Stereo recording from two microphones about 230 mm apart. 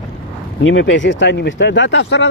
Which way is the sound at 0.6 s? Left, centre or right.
Left.